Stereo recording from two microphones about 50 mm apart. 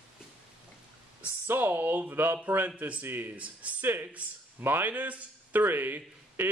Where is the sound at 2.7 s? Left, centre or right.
Right.